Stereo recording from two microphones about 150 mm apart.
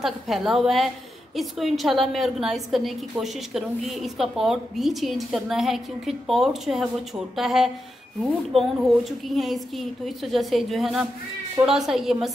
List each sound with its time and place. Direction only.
0.0 s a woman's voice: centre (ahead or behind)